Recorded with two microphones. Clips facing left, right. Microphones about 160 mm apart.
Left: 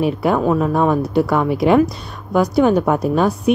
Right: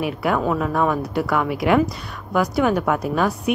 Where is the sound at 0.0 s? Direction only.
25° left (ahead or behind).